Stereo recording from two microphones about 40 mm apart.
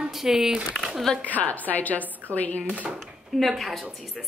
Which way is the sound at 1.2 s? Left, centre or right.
Left.